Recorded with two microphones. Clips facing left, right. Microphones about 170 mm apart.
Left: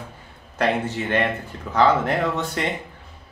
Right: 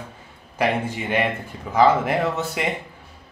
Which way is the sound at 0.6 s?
10° right (ahead or behind).